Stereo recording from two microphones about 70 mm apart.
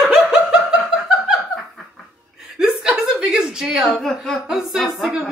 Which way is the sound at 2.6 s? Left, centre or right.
Centre.